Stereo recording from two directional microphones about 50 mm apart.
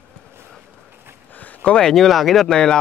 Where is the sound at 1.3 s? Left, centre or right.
Left.